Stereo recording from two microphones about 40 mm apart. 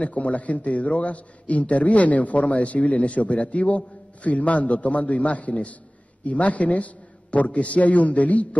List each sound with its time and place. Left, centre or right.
0.0 s a man's voice: left